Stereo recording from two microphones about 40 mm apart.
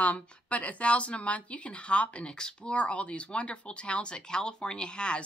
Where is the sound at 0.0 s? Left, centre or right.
Left.